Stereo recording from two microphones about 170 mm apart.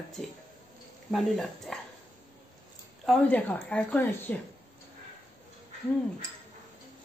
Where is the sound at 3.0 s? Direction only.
5° left (ahead or behind).